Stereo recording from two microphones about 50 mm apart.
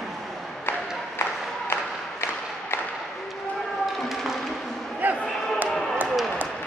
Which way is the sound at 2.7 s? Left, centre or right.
Left.